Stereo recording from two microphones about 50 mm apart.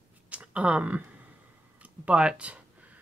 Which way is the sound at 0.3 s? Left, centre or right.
Right.